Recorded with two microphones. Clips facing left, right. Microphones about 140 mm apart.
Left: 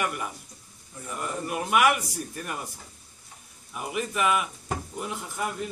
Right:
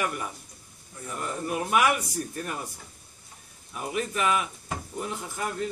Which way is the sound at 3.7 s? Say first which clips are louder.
Even; 5° left (ahead or behind).